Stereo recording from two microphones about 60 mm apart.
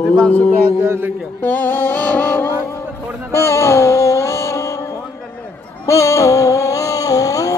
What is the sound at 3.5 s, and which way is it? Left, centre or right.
Music, left.